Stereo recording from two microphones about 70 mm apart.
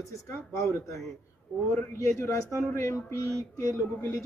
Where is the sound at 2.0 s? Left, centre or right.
Left.